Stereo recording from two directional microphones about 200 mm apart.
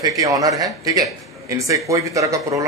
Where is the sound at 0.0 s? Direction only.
15° right (ahead or behind).